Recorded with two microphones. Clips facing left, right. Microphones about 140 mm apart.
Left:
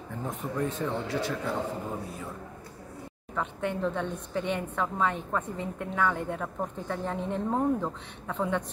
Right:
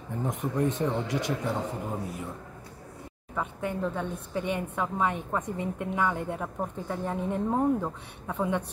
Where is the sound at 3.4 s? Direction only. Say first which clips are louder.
Even; 5° right (ahead or behind).